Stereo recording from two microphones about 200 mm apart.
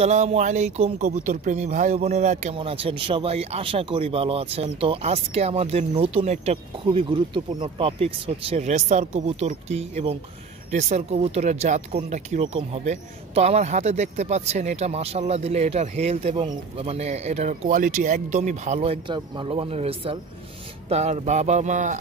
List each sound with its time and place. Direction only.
0.0 s speech: 35° right (ahead or behind)